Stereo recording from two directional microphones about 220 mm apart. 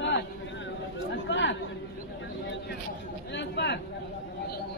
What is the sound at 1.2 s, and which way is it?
Chatter, 55° left (ahead or behind).